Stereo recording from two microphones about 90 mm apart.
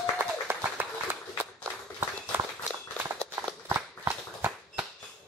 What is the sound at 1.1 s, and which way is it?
Applause, 25° right (ahead or behind).